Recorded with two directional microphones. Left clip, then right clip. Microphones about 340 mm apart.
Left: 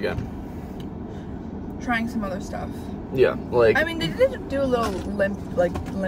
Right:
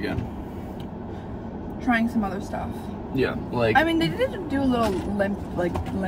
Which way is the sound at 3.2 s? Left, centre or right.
Centre.